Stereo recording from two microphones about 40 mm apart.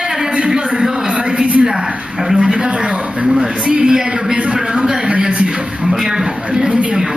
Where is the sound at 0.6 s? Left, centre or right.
Centre.